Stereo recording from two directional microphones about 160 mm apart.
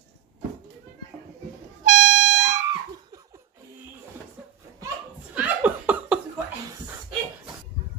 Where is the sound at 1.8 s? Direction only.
55° right (ahead or behind).